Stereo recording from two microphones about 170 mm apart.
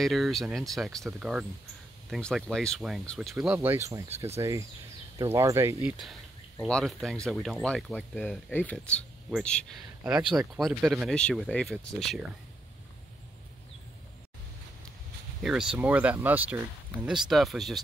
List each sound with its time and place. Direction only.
0.0 s speech: centre (ahead or behind)
10.0 s speech: 5° right (ahead or behind)
15.4 s speech: 5° right (ahead or behind)